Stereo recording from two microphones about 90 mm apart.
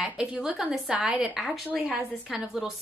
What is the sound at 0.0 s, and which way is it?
A woman's voice, 10° right (ahead or behind).